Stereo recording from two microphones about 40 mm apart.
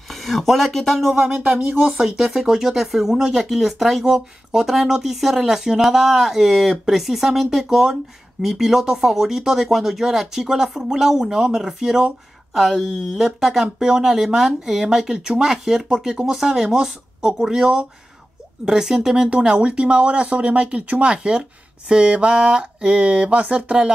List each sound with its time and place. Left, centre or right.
0.1 s speech: centre
1.1 s speech: centre
3.3 s speech: centre
12.5 s speech: centre; by 23.9 s right